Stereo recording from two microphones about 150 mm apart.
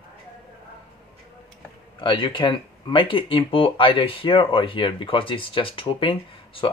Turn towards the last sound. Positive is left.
turn(degrees=35)  # may be behind; listen again after turning